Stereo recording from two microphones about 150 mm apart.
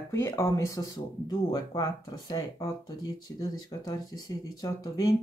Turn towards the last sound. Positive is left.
turn(degrees=25)  # may be behind; listen again after turning